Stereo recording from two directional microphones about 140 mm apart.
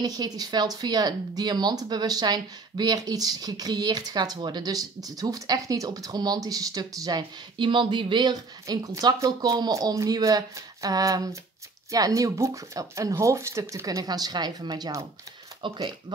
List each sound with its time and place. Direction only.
0.0 s speech: 30° right (ahead or behind)